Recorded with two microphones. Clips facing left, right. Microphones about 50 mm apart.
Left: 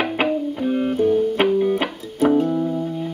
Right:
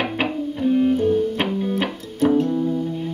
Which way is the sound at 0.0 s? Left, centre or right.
Centre.